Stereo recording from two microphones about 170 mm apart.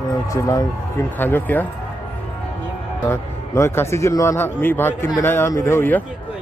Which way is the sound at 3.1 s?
15° left (ahead or behind).